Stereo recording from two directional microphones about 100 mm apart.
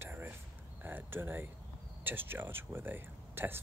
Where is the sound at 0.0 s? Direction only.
25° right (ahead or behind).